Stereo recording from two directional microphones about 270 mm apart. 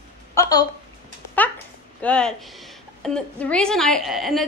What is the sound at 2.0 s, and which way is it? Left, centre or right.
A woman's voice, centre.